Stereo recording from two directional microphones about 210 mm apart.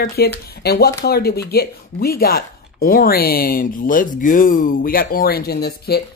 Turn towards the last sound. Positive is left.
turn(degrees=50)  # may be behind; listen again after turning